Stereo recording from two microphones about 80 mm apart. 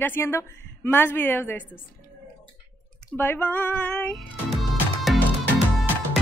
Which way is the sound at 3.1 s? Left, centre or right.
Left.